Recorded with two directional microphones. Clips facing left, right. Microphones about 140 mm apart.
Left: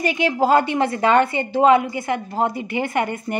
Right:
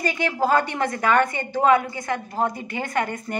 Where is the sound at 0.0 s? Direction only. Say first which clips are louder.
Left 4 dB; 20° left (ahead or behind).